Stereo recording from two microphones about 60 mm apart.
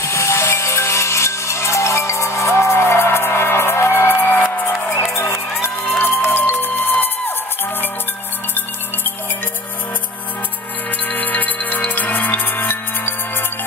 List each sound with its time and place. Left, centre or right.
0.0 s music: left
5.9 s music: left
11.1 s music: left